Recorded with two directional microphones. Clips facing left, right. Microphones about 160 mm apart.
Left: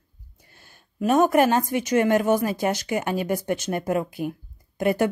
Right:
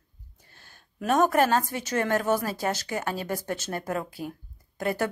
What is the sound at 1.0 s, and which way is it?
Speech, 10° left (ahead or behind).